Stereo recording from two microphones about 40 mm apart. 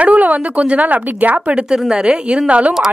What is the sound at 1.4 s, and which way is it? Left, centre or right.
A woman's voice, right.